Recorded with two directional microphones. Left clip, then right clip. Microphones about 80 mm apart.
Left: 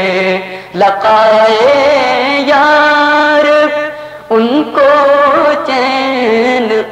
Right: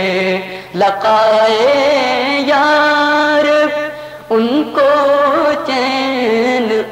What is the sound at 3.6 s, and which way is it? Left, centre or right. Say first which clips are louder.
Music: left 3 dB; left.